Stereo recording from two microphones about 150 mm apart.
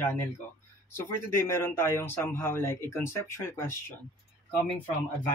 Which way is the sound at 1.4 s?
15° left (ahead or behind).